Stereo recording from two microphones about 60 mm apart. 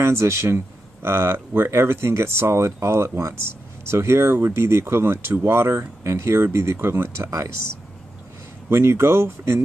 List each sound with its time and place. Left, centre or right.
0.0 s speech: right
7.2 s speech: right
8.6 s speech: right